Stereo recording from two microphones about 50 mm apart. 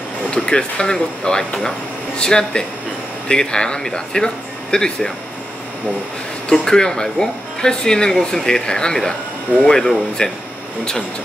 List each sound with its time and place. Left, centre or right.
0.3 s speech: centre
6.5 s speech: centre